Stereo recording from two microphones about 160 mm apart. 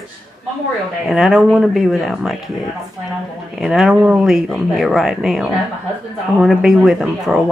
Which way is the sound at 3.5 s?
5° right (ahead or behind).